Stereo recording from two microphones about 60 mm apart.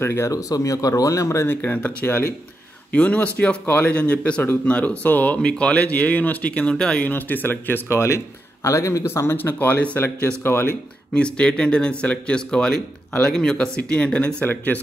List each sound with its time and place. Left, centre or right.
0.0 s speech: left
0.3 s speech: left
1.5 s speech: left
2.0 s speech: left
2.9 s speech: left
7.0 s speech: left
7.9 s speech: left
8.6 s speech: left
9.0 s speech: left
9.9 s speech: left
11.1 s speech: centre